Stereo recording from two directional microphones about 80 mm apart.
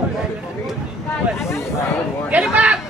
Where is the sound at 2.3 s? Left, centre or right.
Centre.